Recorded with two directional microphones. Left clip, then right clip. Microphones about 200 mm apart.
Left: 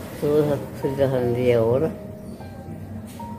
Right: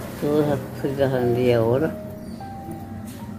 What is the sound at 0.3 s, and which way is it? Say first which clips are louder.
Speech: left 1 dB; 10° left (ahead or behind).